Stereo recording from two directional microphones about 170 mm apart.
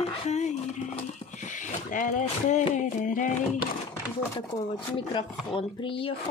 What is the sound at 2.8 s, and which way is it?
Music, 50° left (ahead or behind).